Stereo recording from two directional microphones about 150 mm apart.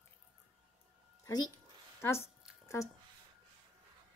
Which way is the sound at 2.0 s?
15° left (ahead or behind).